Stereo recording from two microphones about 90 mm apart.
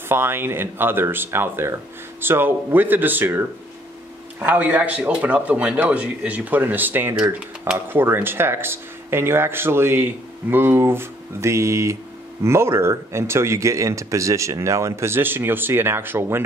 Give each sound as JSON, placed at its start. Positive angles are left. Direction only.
{"t": 0.1, "sound": "speech", "side_deg": -25}